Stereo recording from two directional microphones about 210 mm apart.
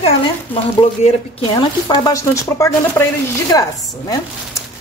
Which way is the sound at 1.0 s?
25° left (ahead or behind).